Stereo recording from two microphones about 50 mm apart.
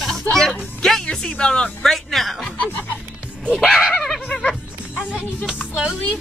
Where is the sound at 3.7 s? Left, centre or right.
Centre.